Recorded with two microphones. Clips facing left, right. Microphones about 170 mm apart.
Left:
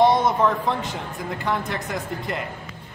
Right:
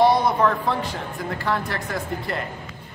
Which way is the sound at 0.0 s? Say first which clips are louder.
Even; 20° left (ahead or behind).